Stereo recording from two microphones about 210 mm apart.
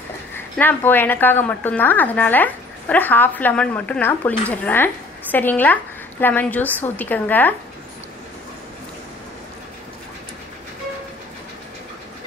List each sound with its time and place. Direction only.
0.6 s a woman's voice: 10° left (ahead or behind)